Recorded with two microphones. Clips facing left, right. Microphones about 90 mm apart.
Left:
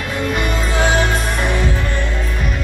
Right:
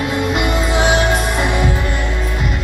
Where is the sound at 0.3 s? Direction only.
15° right (ahead or behind).